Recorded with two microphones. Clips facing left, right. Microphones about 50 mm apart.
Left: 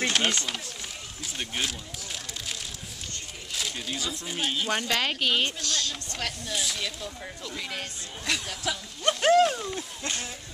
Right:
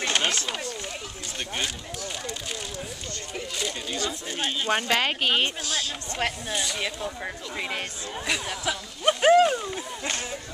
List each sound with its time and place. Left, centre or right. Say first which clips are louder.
0.0 s run: even; centre
3.5 s speech: right 1 dB; centre
4.6 s speech: right 6 dB; right
5.7 s a sound: right 1 dB; centre
6.5 s speech: right 2 dB; centre
7.5 s speech: right 4 dB; right
8.3 s speech: right 1 dB; centre
8.6 s a sound: right 3 dB; centre